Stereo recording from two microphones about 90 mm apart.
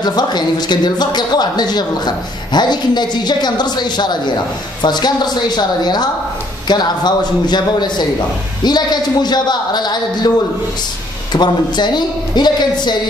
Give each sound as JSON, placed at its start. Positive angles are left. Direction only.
{"t": 0.0, "sound": "speech", "side_deg": 50}
{"t": 11.3, "sound": "speech", "side_deg": 55}